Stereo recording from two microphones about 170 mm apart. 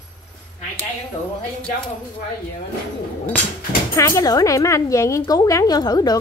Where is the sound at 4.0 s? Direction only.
20° left (ahead or behind).